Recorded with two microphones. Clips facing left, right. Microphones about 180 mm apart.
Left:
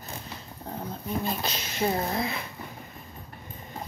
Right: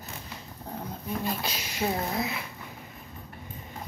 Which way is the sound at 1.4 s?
5° right (ahead or behind).